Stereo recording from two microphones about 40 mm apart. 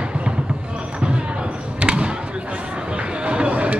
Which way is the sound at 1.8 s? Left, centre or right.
Right.